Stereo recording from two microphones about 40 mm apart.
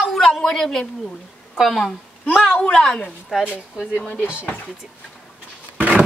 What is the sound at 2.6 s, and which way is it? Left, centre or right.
Speech, left.